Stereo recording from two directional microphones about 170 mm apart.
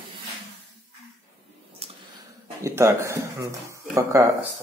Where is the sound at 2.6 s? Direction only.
15° right (ahead or behind).